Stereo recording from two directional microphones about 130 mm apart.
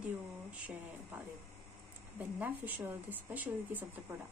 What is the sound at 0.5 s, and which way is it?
A woman's voice, 10° right (ahead or behind).